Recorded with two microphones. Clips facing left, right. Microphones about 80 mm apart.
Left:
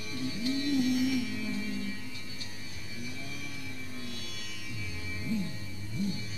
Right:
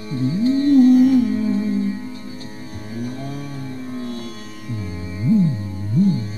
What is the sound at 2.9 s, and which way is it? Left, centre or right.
Music, right.